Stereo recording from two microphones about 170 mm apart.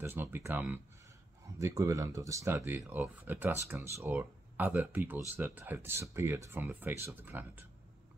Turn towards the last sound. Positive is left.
turn(degrees=-10)  # may be behind; listen again after turning